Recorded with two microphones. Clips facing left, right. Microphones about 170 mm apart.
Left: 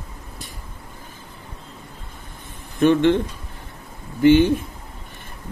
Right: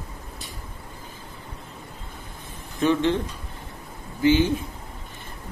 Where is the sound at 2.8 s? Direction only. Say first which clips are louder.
Left 5 dB; 60° left (ahead or behind).